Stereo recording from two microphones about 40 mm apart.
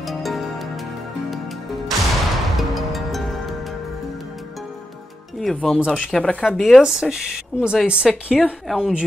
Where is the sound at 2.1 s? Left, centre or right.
Centre.